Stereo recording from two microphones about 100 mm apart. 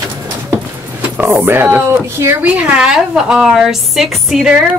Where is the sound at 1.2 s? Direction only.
25° right (ahead or behind).